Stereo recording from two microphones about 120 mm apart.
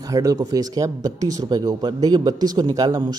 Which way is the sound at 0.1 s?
30° right (ahead or behind).